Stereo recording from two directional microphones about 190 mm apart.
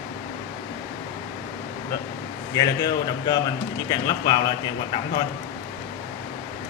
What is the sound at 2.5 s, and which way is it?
Speech, 20° left (ahead or behind).